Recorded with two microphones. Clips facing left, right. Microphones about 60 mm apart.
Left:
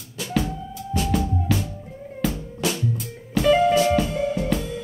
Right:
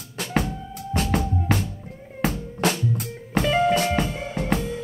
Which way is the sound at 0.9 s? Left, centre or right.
Right.